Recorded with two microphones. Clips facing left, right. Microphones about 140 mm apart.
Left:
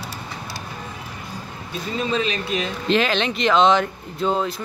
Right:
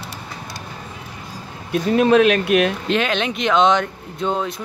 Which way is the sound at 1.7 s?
65° right (ahead or behind).